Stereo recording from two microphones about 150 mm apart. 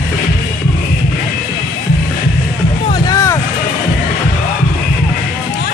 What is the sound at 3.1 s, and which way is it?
Vehicle, 20° left (ahead or behind).